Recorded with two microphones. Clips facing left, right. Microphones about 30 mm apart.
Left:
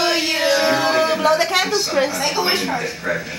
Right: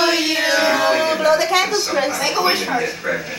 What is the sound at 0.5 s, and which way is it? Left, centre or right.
Music, centre.